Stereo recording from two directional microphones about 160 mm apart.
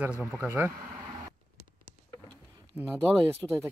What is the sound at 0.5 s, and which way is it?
Speech, 15° right (ahead or behind).